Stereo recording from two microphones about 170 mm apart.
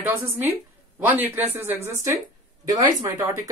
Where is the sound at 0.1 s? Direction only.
15° right (ahead or behind).